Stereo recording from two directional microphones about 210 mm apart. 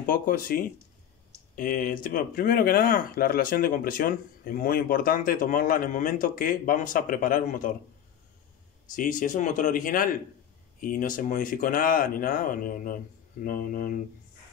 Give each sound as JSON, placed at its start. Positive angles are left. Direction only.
{"t": 0.0, "sound": "speech", "side_deg": 40}
{"t": 8.9, "sound": "speech", "side_deg": 40}